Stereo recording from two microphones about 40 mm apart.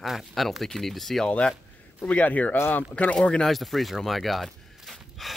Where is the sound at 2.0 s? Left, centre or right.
Left.